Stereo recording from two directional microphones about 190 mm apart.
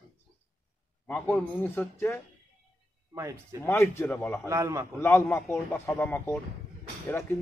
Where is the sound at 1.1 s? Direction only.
10° left (ahead or behind).